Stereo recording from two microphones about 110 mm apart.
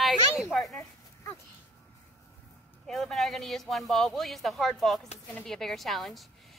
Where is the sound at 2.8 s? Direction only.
Centre (ahead or behind).